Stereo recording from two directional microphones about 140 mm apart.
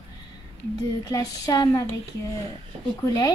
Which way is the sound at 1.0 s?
25° left (ahead or behind).